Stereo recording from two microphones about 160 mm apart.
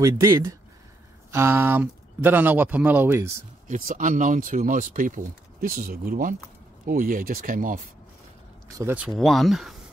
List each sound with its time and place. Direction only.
0.0 s speech: 20° right (ahead or behind)
3.6 s speech: 55° right (ahead or behind)
8.7 s speech: 10° right (ahead or behind)
9.2 s speech: centre (ahead or behind)